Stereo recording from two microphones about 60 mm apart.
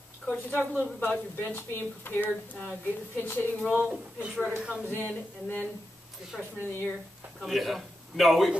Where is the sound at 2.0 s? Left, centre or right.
Left.